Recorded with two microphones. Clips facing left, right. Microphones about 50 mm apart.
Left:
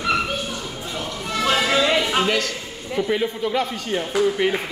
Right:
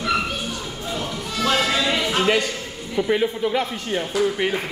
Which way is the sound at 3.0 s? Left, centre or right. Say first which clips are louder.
Right 2 dB; centre.